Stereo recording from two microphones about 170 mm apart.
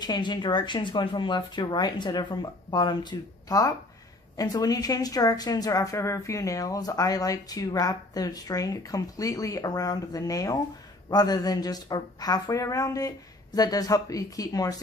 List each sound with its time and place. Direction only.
0.0 s speech: 25° left (ahead or behind)